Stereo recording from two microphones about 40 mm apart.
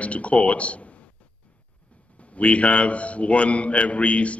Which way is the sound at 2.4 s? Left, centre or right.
Left.